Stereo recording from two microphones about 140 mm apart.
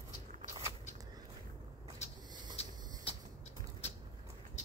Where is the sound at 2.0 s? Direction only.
50° left (ahead or behind).